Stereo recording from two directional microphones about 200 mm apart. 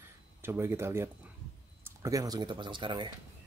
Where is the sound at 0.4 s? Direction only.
10° right (ahead or behind).